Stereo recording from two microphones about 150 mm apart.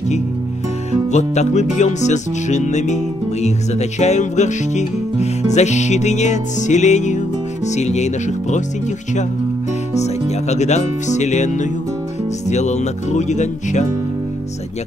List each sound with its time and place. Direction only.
1.1 s music: 50° left (ahead or behind)
10.0 s music: 50° left (ahead or behind)